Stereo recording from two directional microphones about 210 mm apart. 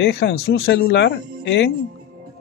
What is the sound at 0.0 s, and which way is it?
Speech, 55° left (ahead or behind).